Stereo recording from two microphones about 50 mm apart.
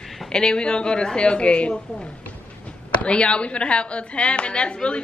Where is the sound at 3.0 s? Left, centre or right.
Left.